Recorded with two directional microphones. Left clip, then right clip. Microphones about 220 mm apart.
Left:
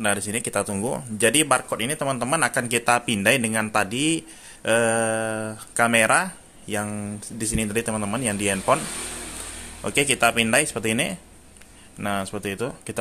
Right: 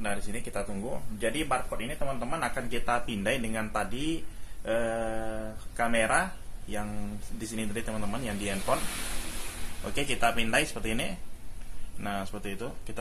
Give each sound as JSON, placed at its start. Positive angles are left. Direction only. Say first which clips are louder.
{"t": 0.0, "sound": "speech", "louder": "left 10 dB", "side_deg": 45}
{"t": 9.8, "sound": "speech", "louder": "left 8 dB", "side_deg": 35}